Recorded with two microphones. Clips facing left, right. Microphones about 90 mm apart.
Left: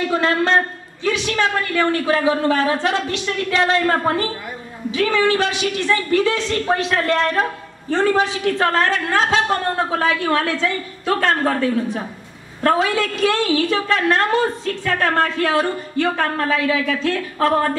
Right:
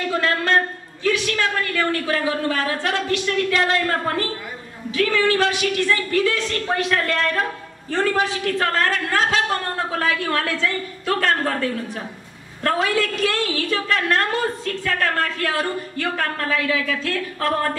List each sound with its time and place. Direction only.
0.1 s a woman's voice: 25° left (ahead or behind)